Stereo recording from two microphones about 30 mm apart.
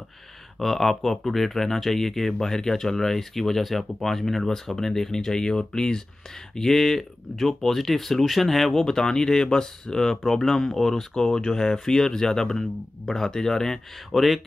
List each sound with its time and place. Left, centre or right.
0.6 s speech: centre
8.8 s speech: centre
14.1 s speech: centre